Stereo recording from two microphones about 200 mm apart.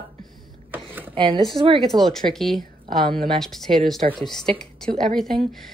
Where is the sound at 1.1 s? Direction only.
25° right (ahead or behind).